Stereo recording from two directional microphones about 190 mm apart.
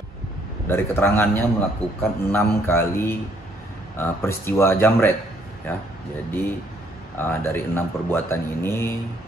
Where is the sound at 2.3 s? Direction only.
10° left (ahead or behind).